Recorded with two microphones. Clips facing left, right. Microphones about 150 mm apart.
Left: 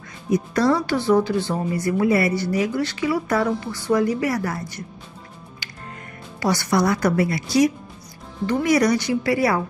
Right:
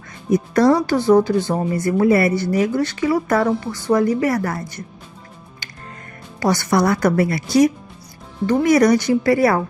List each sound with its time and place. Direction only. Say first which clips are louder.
0.3 s speech: right 4 dB; 45° right (ahead or behind)
6.4 s speech: right 3 dB; 50° right (ahead or behind)